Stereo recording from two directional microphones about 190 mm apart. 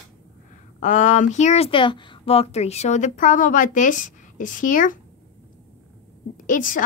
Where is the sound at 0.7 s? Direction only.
40° left (ahead or behind).